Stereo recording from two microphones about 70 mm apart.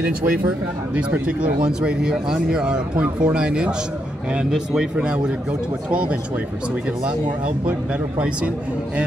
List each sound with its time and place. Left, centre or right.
0.9 s speech: centre